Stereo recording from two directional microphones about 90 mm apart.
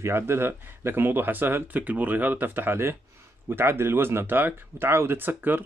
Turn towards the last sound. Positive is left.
turn(degrees=-20)  # may be behind; listen again after turning